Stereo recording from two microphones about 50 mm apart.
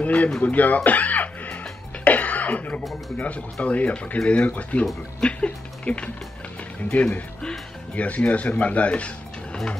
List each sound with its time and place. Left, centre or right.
0.0 s speech: left
0.4 s music: left
2.0 s cough: left
3.2 s speech: left
5.2 s a sound: left
6.8 s speech: left